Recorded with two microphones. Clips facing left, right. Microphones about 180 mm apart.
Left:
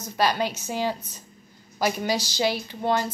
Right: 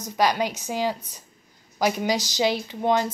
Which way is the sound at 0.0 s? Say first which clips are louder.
Right 1 dB; 15° right (ahead or behind).